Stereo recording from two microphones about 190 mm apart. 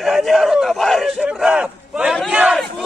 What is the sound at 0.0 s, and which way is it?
Battle cry, centre (ahead or behind).